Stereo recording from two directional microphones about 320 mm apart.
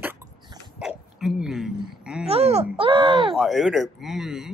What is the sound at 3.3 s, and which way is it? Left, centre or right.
A child's voice, centre.